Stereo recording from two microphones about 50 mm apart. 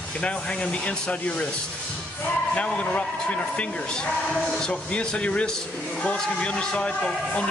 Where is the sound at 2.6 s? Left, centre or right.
Left.